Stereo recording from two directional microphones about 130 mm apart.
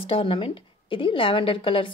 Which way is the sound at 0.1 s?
45° left (ahead or behind).